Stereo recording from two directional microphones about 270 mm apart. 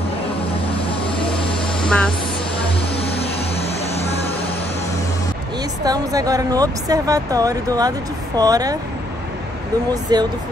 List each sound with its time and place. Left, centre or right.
0.7 s vehicle: centre
1.8 s a sound: centre
3.0 s vehicle: left
5.9 s speech: centre
10.1 s speech: centre